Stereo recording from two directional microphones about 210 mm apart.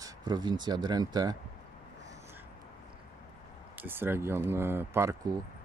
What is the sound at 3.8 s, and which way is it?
Speech, 10° right (ahead or behind).